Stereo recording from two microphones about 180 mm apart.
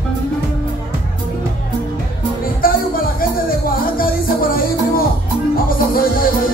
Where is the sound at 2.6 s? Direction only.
55° left (ahead or behind).